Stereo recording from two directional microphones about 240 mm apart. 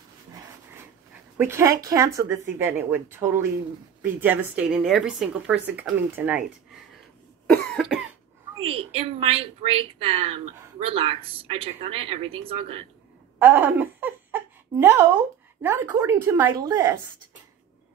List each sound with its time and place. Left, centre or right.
1.4 s a woman's voice: centre
7.4 s cough: centre
8.5 s a woman's voice: right
13.4 s a sound: centre
15.6 s a woman's voice: centre